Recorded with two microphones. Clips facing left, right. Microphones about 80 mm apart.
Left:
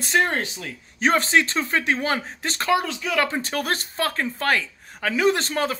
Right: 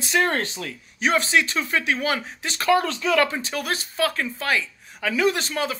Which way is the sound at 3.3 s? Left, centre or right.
Left.